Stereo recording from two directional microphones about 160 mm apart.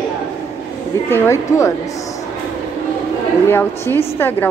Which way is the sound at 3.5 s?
15° left (ahead or behind).